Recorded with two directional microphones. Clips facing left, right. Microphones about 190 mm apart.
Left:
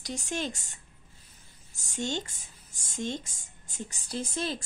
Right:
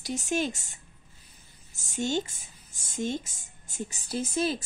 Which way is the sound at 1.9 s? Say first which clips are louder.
Right 4 dB; 5° right (ahead or behind).